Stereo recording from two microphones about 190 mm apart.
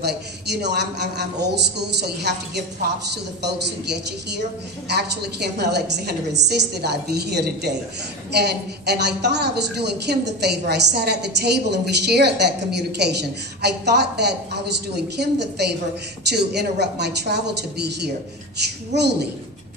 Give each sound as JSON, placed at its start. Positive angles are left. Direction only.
{"t": 0.0, "sound": "a woman's voice", "side_deg": -60}
{"t": 4.8, "sound": "a woman's voice", "side_deg": -60}